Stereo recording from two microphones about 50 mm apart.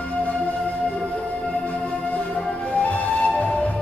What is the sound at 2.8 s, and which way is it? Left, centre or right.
Music, left.